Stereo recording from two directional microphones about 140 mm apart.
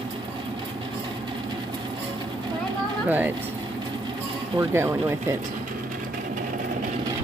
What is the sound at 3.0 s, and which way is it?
Speech, 10° right (ahead or behind).